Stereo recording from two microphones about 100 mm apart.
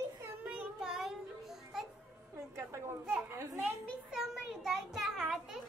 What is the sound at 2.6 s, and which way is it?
Children playing, 30° right (ahead or behind).